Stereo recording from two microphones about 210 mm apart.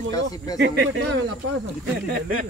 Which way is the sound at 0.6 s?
55° right (ahead or behind).